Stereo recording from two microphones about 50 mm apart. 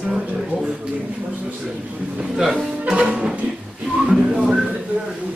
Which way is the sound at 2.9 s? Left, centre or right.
Centre.